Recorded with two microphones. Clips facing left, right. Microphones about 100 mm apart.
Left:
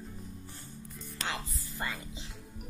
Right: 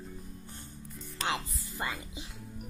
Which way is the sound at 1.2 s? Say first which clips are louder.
Right 4 dB; 20° right (ahead or behind).